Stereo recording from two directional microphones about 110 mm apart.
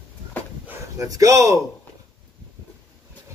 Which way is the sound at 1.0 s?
30° right (ahead or behind).